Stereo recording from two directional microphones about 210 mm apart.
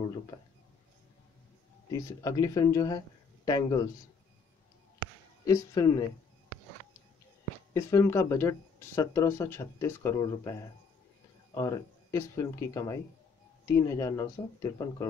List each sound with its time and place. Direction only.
1.9 s speech: 15° left (ahead or behind)
5.4 s speech: 15° left (ahead or behind)
7.7 s speech: 15° left (ahead or behind)